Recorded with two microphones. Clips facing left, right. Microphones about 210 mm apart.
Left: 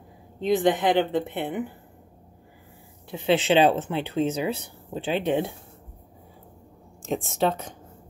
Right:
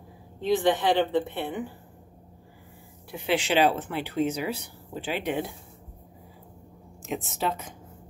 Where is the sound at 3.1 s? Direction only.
25° left (ahead or behind).